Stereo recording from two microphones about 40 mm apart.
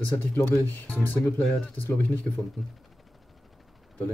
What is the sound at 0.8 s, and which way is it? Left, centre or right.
Speech, left.